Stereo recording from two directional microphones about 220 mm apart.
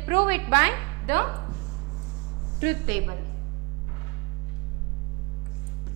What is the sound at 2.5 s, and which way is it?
Speech, 10° right (ahead or behind).